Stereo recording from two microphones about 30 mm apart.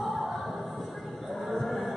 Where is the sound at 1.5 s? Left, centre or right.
Centre.